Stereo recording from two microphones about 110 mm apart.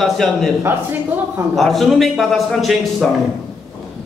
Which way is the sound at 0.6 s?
20° right (ahead or behind).